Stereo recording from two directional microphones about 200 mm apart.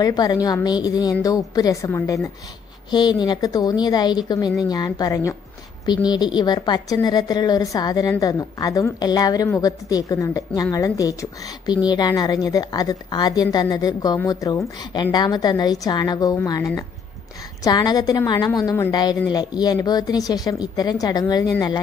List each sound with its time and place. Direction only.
0.0 s a woman's voice: 20° left (ahead or behind)